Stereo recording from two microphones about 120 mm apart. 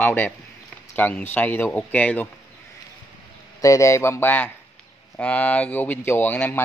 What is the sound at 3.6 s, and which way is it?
Speech, 25° left (ahead or behind).